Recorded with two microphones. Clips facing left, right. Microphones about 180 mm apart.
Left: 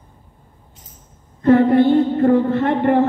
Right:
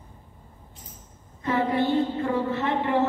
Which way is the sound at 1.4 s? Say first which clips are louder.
Left 12 dB; 55° left (ahead or behind).